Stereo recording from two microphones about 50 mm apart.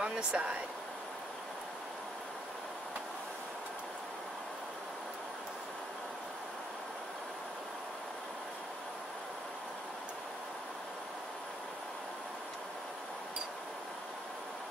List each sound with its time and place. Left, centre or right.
0.0 s speech: right